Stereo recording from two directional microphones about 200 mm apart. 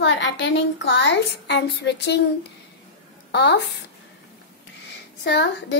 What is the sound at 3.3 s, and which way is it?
Speech, 55° left (ahead or behind).